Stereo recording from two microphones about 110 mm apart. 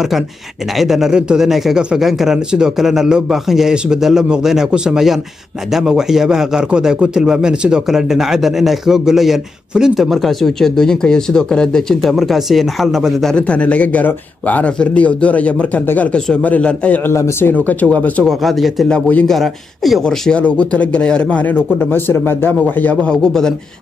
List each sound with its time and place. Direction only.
0.7 s a man's voice: 5° right (ahead or behind)
17.1 s speech: 25° left (ahead or behind)
18.2 s a man's voice: centre (ahead or behind)